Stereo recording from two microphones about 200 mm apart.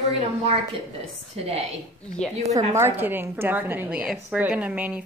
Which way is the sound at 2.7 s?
10° right (ahead or behind).